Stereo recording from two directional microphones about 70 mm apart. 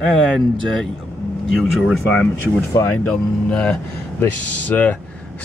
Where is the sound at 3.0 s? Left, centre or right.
Centre.